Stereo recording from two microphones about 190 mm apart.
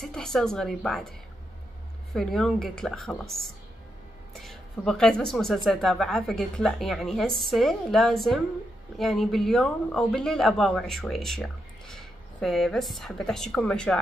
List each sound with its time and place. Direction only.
0.0 s speech: centre (ahead or behind)
2.1 s speech: centre (ahead or behind)